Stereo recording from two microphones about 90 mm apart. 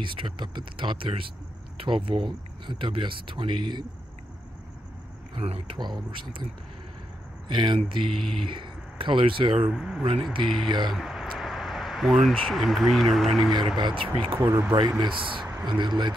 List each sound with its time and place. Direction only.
0.0 s speech: 70° right (ahead or behind)
5.3 s speech: 90° right
5.8 s speech: 55° right (ahead or behind)
7.4 s speech: 65° right (ahead or behind)
8.1 s speech: 5° left (ahead or behind)
8.5 s speech: 65° right (ahead or behind)
9.7 s speech: 5° right (ahead or behind)
13.7 s speech: 65° right (ahead or behind)
14.4 s speech: 25° right (ahead or behind)
15.0 s speech: 65° right (ahead or behind)
15.6 s speech: 55° right (ahead or behind)